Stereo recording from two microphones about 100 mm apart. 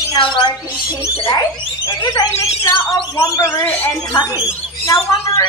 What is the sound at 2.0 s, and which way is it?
A woman's voice, 40° left (ahead or behind).